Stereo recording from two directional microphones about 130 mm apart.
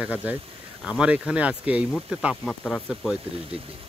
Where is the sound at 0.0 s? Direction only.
10° right (ahead or behind).